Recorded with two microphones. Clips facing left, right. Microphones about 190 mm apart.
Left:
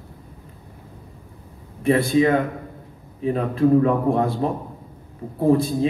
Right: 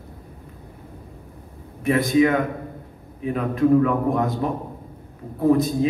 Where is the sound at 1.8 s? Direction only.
30° left (ahead or behind).